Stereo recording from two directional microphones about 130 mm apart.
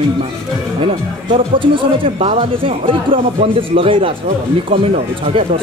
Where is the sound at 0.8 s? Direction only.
40° right (ahead or behind).